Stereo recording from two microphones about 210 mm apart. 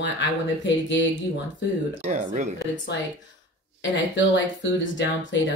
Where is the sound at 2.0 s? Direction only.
35° right (ahead or behind).